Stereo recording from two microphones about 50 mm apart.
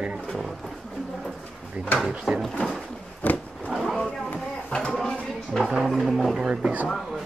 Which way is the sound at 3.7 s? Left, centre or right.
Centre.